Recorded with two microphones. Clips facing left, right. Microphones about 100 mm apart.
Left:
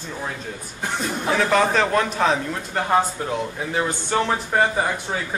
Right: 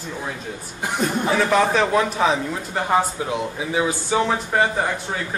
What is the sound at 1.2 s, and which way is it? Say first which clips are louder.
A man's voice: even; centre (ahead or behind).